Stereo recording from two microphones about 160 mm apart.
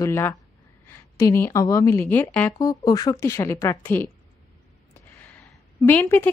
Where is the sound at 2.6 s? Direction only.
25° left (ahead or behind).